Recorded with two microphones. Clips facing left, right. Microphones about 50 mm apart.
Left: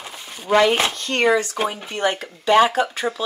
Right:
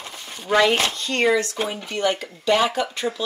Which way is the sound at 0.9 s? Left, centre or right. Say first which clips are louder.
Left 1 dB; left.